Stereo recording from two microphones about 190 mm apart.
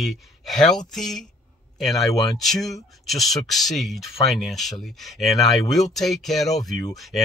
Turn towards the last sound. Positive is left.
turn(degrees=0)  # may be behind; listen again after turning